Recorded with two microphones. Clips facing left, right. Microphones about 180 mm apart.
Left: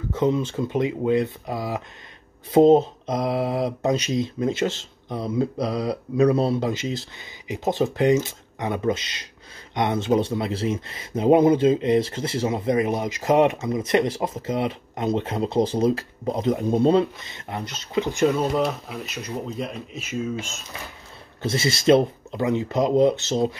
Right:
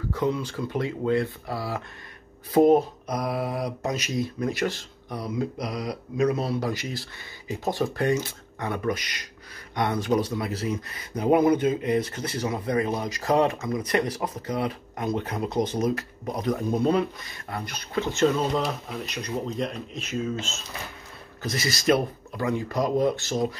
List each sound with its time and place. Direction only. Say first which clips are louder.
0.1 s speech: left 5 dB; 20° left (ahead or behind)
18.6 s speech: left 4 dB; centre (ahead or behind)
21.4 s speech: left 5 dB; 25° left (ahead or behind)